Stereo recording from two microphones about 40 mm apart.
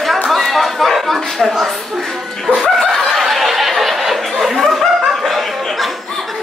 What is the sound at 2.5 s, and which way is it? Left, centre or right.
Chicken, centre.